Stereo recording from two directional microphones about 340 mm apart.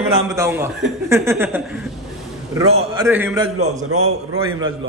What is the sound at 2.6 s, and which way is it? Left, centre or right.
Speech, centre.